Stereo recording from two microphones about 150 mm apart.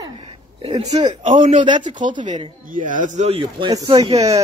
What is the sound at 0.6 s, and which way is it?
Speech, 45° right (ahead or behind).